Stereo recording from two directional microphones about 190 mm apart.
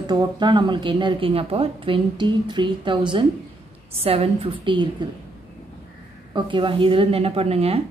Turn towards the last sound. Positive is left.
turn(degrees=-30)  # may be behind; listen again after turning